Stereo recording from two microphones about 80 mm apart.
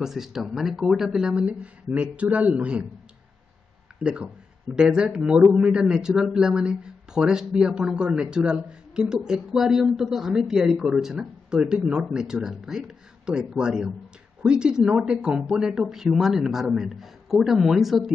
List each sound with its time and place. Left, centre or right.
0.0 s a man's voice: centre
4.0 s a man's voice: centre